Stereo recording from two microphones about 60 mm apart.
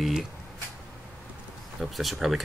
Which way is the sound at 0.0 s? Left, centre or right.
Centre.